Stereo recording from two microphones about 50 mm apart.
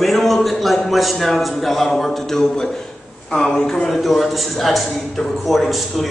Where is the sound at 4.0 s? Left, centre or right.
Centre.